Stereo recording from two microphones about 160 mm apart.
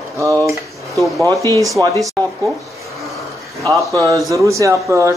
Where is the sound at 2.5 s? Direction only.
Centre (ahead or behind).